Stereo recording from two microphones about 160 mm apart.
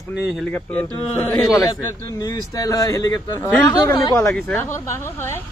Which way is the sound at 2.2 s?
25° left (ahead or behind).